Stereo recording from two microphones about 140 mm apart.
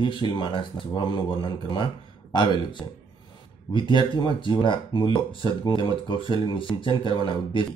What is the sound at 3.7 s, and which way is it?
Speech, 35° left (ahead or behind).